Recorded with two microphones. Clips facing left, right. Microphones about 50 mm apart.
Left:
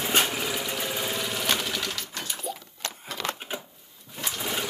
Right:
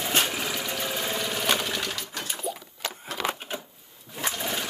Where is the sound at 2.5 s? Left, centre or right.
Centre.